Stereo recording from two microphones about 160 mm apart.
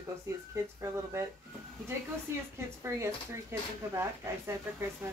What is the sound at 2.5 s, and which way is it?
Speech, 15° right (ahead or behind).